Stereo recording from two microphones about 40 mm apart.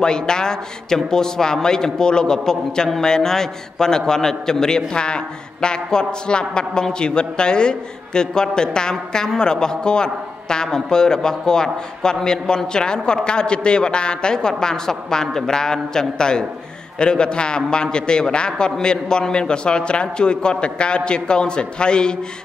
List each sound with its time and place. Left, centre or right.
0.0 s a man's voice: centre